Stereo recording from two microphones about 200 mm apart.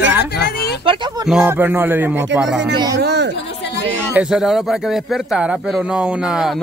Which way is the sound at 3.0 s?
55° right (ahead or behind).